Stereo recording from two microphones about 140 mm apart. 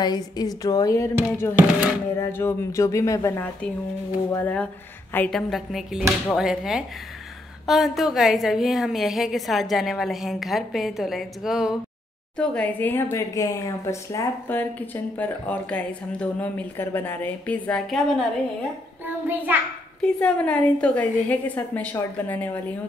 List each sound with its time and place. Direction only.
0.0 s speech: 30° left (ahead or behind)
4.3 s speech: 10° left (ahead or behind)
5.5 s a woman's voice: centre (ahead or behind)
12.4 s speech: 10° left (ahead or behind)
19.2 s a child's voice: 15° right (ahead or behind)
20.0 s speech: 10° left (ahead or behind)